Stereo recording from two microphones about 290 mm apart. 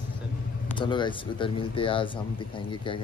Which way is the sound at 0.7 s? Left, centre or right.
Centre.